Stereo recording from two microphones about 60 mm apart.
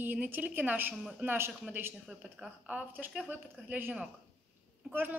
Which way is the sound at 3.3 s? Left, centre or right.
Right.